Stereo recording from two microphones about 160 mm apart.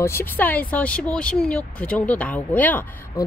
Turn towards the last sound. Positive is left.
turn(degrees=20)  # may be behind; listen again after turning